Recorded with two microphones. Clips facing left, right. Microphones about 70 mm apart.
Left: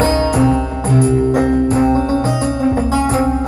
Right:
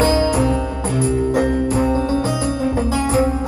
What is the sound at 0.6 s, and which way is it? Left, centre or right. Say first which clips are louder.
Music: left 5 dB; left.